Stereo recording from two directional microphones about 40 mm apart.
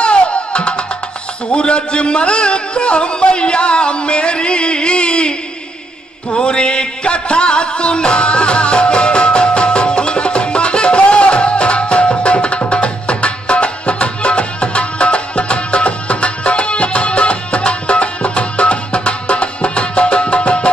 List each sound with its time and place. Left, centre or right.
0.0 s music: left
1.5 s speech: left
6.3 s music: left